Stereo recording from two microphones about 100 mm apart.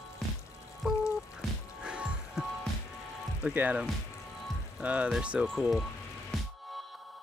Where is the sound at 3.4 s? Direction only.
15° right (ahead or behind).